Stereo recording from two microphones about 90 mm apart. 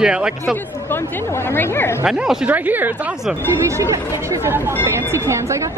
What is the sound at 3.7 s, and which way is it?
Speech, 35° right (ahead or behind).